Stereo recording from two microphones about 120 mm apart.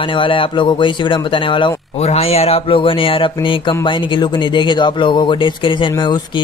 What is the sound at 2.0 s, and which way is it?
Speech, 60° left (ahead or behind).